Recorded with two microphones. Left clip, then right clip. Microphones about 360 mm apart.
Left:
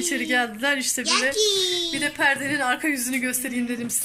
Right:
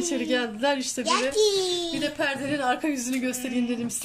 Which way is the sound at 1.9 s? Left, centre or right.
Centre.